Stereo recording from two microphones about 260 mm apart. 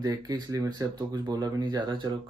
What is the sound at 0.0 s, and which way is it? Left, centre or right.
Speech, centre.